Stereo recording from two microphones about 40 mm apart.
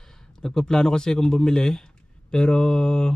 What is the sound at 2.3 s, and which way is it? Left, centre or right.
Mantra, left.